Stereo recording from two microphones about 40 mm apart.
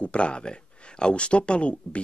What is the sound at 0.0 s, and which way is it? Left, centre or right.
Speech, left.